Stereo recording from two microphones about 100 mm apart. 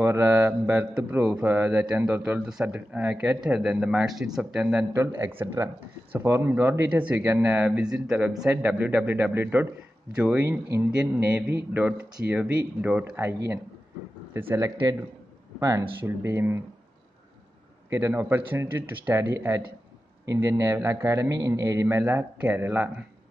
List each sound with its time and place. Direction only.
0.0 s a man's voice: 25° right (ahead or behind); by 4.8 s 5° right (ahead or behind)
4.9 s a man's voice: 25° right (ahead or behind)
6.9 s a man's voice: 15° right (ahead or behind); by 14.7 s 30° right (ahead or behind)
16.0 s a man's voice: 25° right (ahead or behind)
18.1 s a man's voice: 20° right (ahead or behind)